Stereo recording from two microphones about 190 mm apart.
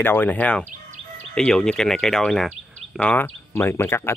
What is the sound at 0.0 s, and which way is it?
Speech, 10° left (ahead or behind).